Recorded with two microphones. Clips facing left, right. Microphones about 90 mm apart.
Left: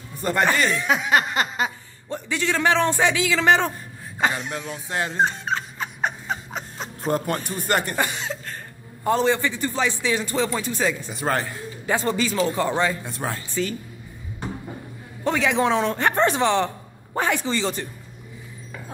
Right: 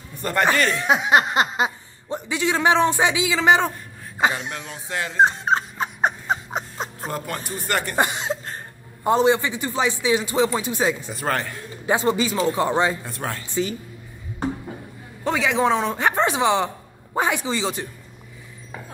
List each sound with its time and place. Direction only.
0.2 s speech: 15° left (ahead or behind)
0.7 s speech: 20° right (ahead or behind)
4.8 s speech: 30° left (ahead or behind)
5.1 s a sound: 30° right (ahead or behind)
7.1 s speech: 35° left (ahead or behind)
7.3 s speech: 20° right (ahead or behind)
7.6 s speech: 30° left (ahead or behind)
7.9 s cough: 25° right (ahead or behind)
9.0 s speech: 15° right (ahead or behind)
11.1 s speech: 15° left (ahead or behind)
11.8 s speech: 15° right (ahead or behind)
13.2 s speech: 15° left (ahead or behind)
15.2 s speech: centre (ahead or behind)